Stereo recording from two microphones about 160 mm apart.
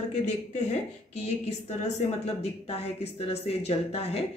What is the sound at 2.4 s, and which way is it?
Speech, 40° left (ahead or behind).